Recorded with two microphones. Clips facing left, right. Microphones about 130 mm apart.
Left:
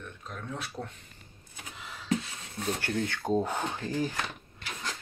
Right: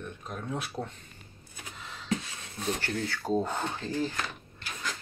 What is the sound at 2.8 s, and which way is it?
Speech, 20° left (ahead or behind).